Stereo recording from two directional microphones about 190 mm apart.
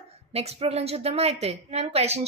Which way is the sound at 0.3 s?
30° right (ahead or behind).